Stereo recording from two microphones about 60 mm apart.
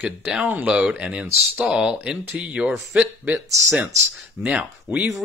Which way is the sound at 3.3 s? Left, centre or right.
Right.